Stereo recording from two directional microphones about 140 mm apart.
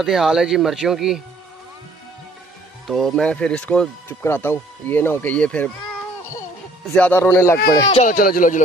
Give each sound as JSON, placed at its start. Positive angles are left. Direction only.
{"t": 0.0, "sound": "speech", "side_deg": -5}
{"t": 2.9, "sound": "speech", "side_deg": 0}
{"t": 6.9, "sound": "speech", "side_deg": 10}
{"t": 8.1, "sound": "speech", "side_deg": 85}